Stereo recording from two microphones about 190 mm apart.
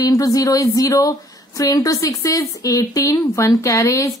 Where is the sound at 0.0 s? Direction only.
20° left (ahead or behind).